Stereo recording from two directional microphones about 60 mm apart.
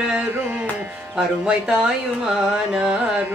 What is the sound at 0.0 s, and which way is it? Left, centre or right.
Music, right.